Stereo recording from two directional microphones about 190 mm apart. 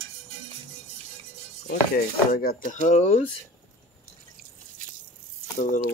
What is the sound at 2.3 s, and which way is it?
Speech, 50° left (ahead or behind).